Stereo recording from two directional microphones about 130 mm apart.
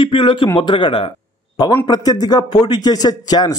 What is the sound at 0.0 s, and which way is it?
A man's voice, 40° left (ahead or behind).